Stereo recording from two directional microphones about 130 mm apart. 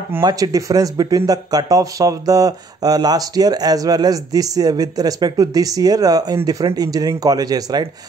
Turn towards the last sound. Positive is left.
turn(degrees=-30)  # may be behind; listen again after turning